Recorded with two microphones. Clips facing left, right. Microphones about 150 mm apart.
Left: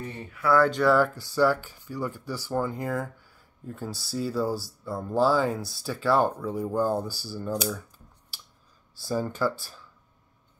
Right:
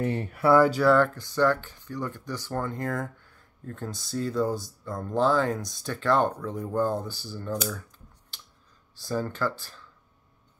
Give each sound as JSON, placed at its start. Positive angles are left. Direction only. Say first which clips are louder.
{"t": 0.0, "sound": "speech", "louder": "right 9 dB", "side_deg": -80}
{"t": 0.6, "sound": "speech", "louder": "even", "side_deg": -5}
{"t": 0.9, "sound": "speech", "louder": "even", "side_deg": 5}
{"t": 9.0, "sound": "speech", "louder": "left 2 dB", "side_deg": 15}